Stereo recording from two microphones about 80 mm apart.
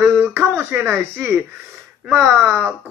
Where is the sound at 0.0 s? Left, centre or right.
Right.